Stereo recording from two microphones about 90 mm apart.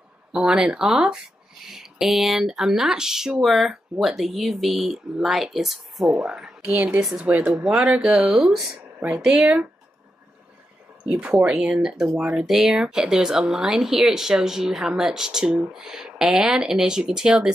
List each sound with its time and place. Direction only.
0.3 s speech: 5° right (ahead or behind)
6.7 s speech: 15° right (ahead or behind)
7.5 s speech: 5° right (ahead or behind)
11.1 s speech: 10° right (ahead or behind)